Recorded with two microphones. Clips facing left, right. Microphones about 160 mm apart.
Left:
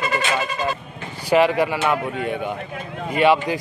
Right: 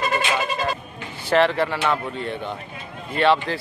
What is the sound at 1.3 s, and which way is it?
A man's voice, 10° left (ahead or behind).